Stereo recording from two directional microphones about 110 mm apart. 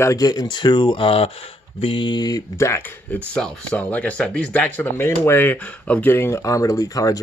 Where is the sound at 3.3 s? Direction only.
5° left (ahead or behind).